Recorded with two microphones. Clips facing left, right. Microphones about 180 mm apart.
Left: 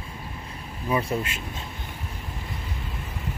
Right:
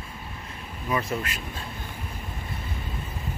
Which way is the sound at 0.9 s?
30° left (ahead or behind).